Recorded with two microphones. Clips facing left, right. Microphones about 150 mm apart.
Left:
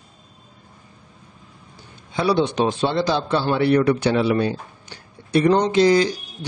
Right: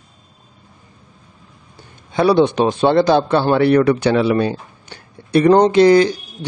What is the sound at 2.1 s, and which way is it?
A man's voice, 55° right (ahead or behind).